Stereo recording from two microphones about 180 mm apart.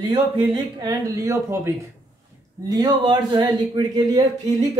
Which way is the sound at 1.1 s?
15° right (ahead or behind).